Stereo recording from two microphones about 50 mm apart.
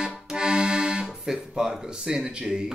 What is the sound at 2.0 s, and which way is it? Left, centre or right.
Speech, centre.